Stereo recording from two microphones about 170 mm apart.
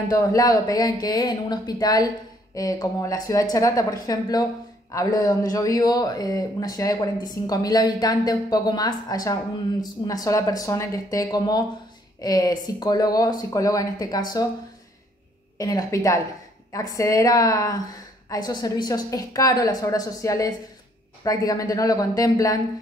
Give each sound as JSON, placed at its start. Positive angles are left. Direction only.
{"t": 0.1, "sound": "speech", "side_deg": 20}
{"t": 15.5, "sound": "speech", "side_deg": 20}